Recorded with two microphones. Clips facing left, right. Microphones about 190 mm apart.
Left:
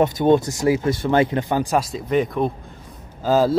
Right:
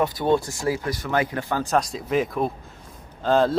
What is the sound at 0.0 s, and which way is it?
A man's voice, 20° left (ahead or behind).